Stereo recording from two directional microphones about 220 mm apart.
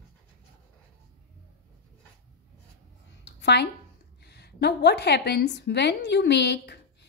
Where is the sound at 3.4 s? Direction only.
50° left (ahead or behind).